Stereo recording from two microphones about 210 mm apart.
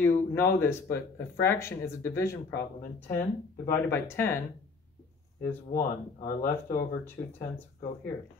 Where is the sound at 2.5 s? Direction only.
50° left (ahead or behind).